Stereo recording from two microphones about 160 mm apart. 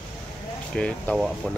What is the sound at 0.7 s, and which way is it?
Speech, 5° left (ahead or behind).